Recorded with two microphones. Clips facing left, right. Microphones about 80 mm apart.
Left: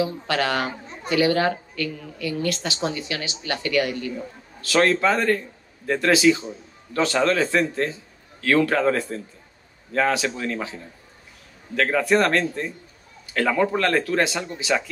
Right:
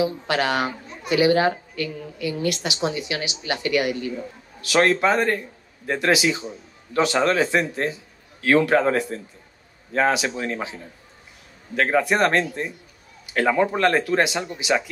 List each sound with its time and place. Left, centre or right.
0.0 s a woman's voice: centre